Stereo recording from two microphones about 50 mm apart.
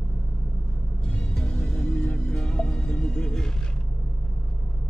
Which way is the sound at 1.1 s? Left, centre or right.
Centre.